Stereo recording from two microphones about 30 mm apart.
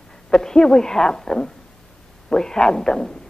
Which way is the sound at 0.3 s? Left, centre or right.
Left.